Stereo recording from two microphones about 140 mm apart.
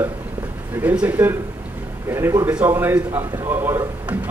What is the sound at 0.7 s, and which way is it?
A man's voice, 10° right (ahead or behind).